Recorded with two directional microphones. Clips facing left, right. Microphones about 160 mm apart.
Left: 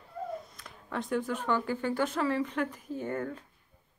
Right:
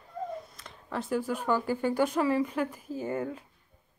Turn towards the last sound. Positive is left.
turn(degrees=-10)  # may be behind; listen again after turning